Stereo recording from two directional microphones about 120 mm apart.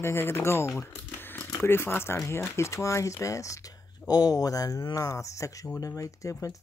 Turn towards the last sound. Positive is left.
turn(degrees=25)  # may be behind; listen again after turning